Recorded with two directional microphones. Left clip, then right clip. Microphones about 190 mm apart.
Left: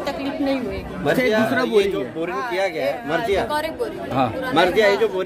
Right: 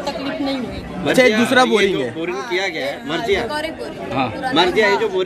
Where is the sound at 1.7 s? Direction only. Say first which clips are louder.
Right 3 dB; 50° left (ahead or behind).